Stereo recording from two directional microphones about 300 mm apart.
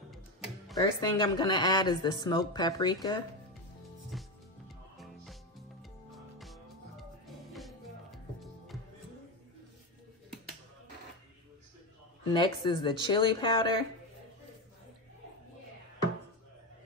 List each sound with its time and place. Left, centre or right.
0.1 s music: centre
0.7 s speech: centre
4.1 s music: centre
12.3 s speech: centre